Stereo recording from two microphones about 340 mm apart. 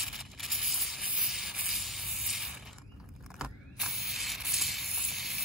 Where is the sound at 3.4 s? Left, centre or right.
Centre.